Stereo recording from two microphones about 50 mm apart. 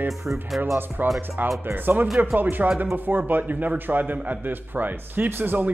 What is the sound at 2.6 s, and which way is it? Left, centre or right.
Speech, right.